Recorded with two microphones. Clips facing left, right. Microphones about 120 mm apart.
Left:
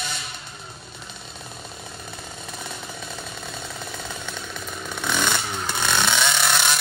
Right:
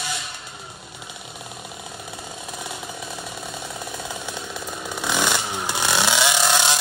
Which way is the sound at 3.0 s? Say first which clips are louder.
Right 2 dB; 25° right (ahead or behind).